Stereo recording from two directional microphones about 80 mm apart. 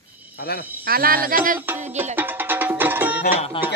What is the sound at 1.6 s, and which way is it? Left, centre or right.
Music, right.